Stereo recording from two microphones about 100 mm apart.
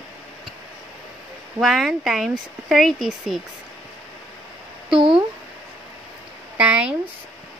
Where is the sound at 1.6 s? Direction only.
Centre (ahead or behind).